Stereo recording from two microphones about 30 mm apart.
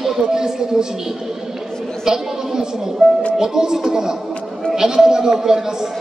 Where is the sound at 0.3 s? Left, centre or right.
Right.